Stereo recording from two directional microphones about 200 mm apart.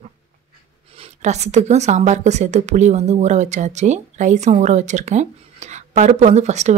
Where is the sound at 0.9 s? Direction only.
30° right (ahead or behind).